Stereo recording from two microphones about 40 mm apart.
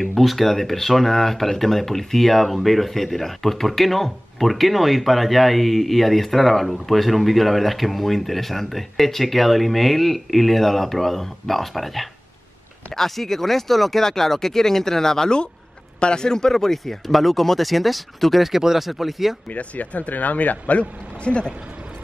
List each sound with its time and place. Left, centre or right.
0.0 s speech: centre
19.5 s speech: left
21.2 s speech: left